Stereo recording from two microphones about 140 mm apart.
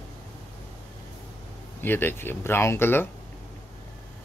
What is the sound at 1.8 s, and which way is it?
Speech, 15° left (ahead or behind).